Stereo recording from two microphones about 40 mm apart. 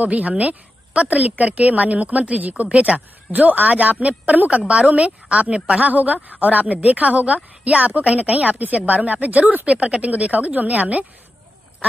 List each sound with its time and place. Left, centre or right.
0.0 s a woman's voice: right